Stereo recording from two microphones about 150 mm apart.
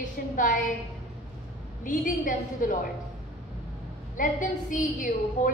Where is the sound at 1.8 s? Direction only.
65° left (ahead or behind).